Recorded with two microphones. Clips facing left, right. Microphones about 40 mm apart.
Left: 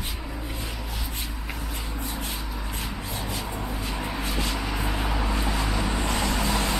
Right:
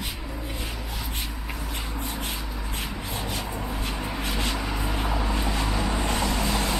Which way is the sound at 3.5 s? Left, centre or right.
Centre.